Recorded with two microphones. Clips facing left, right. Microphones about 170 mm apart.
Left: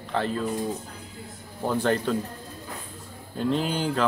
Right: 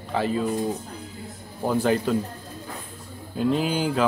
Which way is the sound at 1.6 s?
5° right (ahead or behind).